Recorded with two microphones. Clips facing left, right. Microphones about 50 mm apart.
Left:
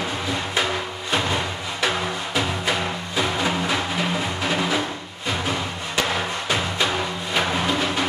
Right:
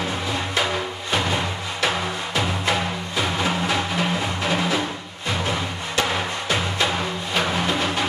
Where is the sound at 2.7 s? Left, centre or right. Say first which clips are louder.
Right 1 dB; centre.